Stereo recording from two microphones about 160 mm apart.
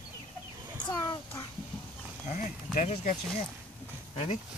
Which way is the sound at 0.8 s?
25° left (ahead or behind).